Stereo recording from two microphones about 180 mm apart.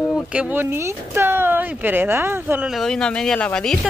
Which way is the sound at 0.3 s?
10° right (ahead or behind).